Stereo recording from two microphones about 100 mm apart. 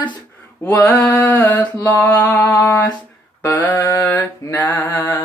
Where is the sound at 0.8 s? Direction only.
35° left (ahead or behind).